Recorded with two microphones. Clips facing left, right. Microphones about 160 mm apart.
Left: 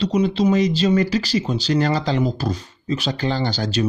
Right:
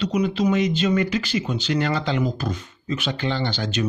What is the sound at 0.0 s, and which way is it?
Speech, 30° left (ahead or behind).